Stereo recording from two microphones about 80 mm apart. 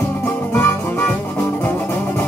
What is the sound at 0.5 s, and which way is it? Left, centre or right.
Music, left.